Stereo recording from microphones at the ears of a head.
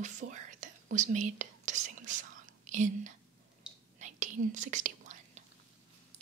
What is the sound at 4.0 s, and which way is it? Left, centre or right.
Whispering, right.